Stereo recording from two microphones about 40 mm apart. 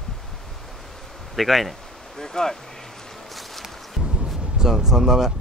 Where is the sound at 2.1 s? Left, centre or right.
Centre.